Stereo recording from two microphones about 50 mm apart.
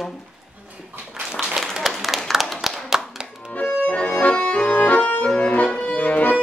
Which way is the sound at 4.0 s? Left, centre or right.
Left.